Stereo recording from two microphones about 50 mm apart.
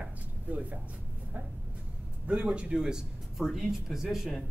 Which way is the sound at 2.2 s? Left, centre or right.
Right.